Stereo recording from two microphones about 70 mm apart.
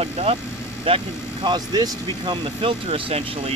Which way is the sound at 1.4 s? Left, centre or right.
Right.